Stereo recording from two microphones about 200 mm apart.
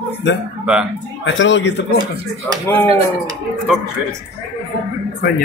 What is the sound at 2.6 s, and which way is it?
Speech, 15° left (ahead or behind).